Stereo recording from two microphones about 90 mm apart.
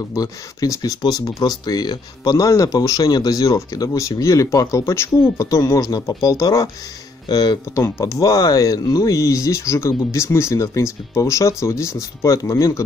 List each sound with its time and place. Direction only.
0.1 s speech: 45° left (ahead or behind)